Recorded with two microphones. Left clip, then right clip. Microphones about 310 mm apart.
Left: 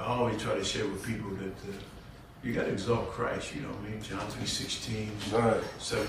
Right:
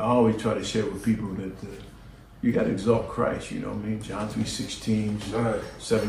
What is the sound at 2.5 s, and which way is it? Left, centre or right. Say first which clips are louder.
Speech: right 5 dB; centre.